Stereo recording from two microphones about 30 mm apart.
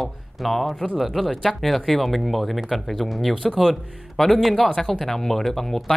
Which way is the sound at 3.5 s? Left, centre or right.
Centre.